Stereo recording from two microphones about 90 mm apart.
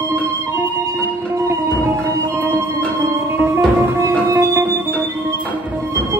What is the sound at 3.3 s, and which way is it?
Music, 40° right (ahead or behind).